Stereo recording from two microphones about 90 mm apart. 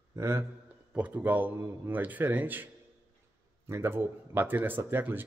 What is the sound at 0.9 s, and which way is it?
Speech, 15° right (ahead or behind).